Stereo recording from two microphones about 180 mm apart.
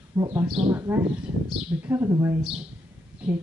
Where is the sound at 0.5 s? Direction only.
10° right (ahead or behind).